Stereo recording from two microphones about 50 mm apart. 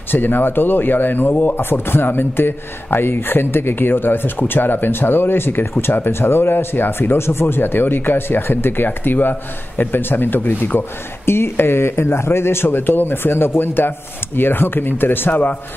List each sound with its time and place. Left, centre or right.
0.1 s speech: left
11.2 s speech: left